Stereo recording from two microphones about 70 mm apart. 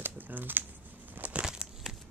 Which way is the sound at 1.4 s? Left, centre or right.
Centre.